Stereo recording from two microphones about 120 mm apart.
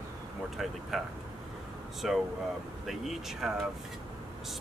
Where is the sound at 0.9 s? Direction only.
Centre (ahead or behind).